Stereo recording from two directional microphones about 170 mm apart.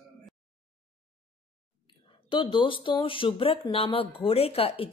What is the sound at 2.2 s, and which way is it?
A woman's voice, 30° left (ahead or behind).